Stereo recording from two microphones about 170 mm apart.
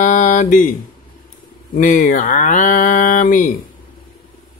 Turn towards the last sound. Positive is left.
turn(degrees=50)  # may be behind; listen again after turning